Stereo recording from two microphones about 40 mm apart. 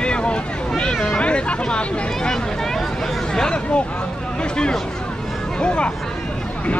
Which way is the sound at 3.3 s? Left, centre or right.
Centre.